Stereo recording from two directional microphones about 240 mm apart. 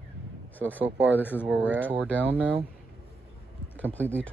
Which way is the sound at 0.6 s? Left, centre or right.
Centre.